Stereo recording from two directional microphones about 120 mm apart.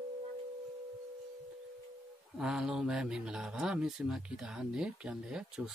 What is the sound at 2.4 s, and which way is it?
Speech, 5° right (ahead or behind).